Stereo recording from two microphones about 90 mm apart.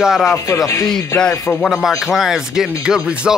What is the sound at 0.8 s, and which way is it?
Speech, 5° left (ahead or behind).